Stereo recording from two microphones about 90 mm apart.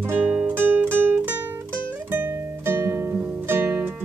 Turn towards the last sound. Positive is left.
turn(degrees=-25)  # may be behind; listen again after turning